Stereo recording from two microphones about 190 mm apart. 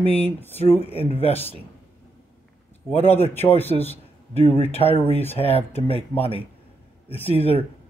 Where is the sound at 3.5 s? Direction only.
30° left (ahead or behind).